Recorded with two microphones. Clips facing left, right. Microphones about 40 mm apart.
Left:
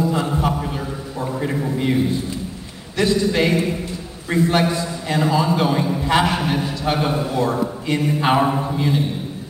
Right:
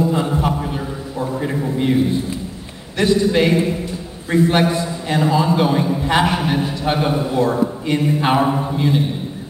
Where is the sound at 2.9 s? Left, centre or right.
Right.